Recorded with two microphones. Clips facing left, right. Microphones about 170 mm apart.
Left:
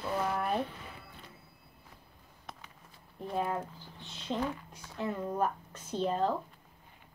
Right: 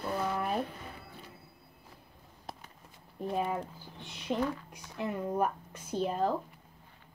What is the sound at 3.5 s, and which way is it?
Speech, 15° right (ahead or behind).